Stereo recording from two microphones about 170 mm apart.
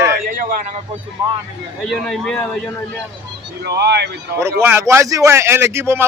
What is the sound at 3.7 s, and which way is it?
Speech, 75° right (ahead or behind).